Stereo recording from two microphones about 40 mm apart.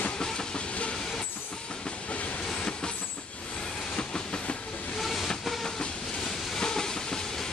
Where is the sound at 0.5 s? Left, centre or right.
Left.